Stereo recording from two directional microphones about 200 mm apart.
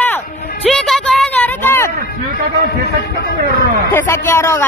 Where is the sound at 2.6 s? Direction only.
50° left (ahead or behind).